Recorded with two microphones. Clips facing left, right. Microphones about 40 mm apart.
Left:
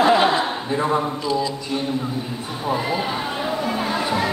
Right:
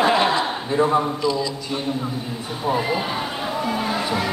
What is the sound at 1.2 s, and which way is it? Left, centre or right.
Speech, centre.